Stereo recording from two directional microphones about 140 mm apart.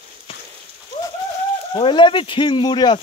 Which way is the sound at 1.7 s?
35° left (ahead or behind).